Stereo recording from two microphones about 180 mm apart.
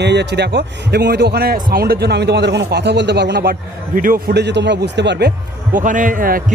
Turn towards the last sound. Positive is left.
turn(degrees=-50)  # may be behind; listen again after turning